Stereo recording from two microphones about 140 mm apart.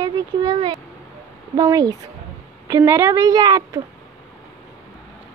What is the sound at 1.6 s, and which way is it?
A woman's voice, 25° right (ahead or behind).